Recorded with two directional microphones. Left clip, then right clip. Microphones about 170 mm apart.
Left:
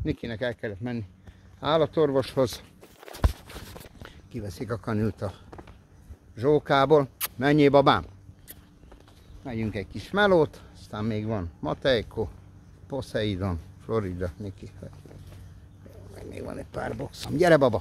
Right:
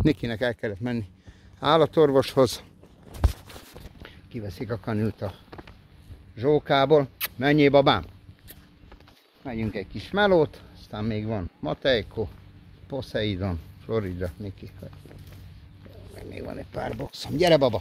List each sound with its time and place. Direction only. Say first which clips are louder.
0.0 s speech: right 6 dB; 80° right
0.5 s speech: right 3 dB; 45° right (ahead or behind); by 2.6 s 70° right (ahead or behind)
4.0 s speech: right 2 dB; 5° right (ahead or behind)
9.4 s speech: right 1 dB; 35° right (ahead or behind)
9.9 s speech: right 1 dB; centre (ahead or behind)
16.2 s speech: right 1 dB; 5° left (ahead or behind)
17.3 s speech: even; 30° left (ahead or behind)